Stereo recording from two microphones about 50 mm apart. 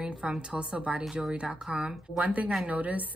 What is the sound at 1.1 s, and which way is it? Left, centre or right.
Speech, centre.